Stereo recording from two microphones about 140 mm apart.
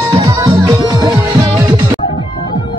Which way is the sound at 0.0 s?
25° right (ahead or behind).